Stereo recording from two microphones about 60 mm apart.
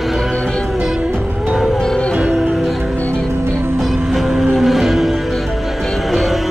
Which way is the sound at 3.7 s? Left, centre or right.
Centre.